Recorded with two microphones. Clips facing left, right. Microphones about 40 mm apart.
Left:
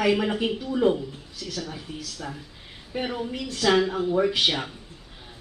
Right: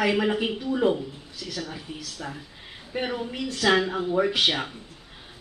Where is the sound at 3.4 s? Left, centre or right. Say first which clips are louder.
Even; centre.